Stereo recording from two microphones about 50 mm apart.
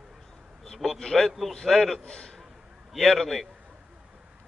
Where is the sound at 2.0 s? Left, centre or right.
Centre.